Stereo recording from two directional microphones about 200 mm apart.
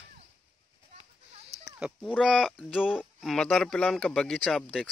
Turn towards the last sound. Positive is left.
turn(degrees=5)  # may be behind; listen again after turning